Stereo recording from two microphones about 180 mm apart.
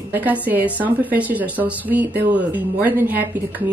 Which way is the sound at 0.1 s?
10° right (ahead or behind).